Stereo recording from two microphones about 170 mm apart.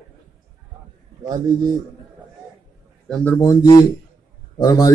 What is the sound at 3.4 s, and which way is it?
Speech, 20° left (ahead or behind).